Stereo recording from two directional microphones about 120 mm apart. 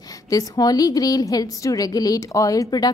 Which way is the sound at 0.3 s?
30° left (ahead or behind).